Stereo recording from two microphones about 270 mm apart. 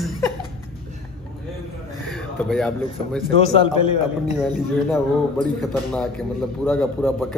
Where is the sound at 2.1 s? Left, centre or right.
Centre.